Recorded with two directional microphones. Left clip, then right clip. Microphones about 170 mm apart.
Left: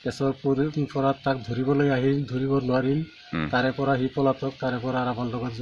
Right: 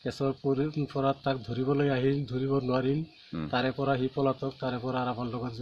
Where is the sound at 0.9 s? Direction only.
30° right (ahead or behind).